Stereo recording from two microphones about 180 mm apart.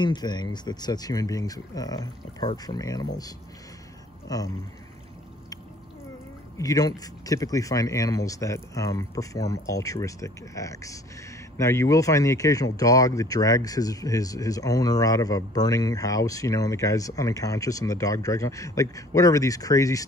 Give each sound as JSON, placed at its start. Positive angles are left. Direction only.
{"t": 0.0, "sound": "speech", "side_deg": 25}
{"t": 4.3, "sound": "speech", "side_deg": 20}
{"t": 6.6, "sound": "speech", "side_deg": 20}